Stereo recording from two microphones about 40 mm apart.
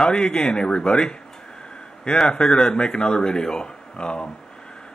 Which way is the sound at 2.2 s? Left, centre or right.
Centre.